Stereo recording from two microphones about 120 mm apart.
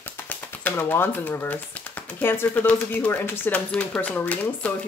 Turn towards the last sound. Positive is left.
turn(degrees=10)  # may be behind; listen again after turning